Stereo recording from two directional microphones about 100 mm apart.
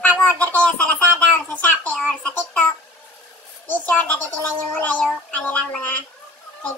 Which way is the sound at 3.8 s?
15° left (ahead or behind).